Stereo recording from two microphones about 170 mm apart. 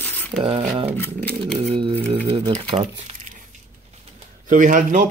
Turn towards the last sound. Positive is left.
turn(degrees=-50)  # may be behind; listen again after turning